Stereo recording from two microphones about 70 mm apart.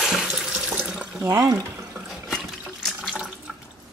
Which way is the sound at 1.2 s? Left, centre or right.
Right.